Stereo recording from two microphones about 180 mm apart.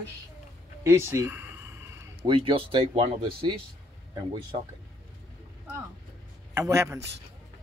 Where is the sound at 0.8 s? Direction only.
15° right (ahead or behind).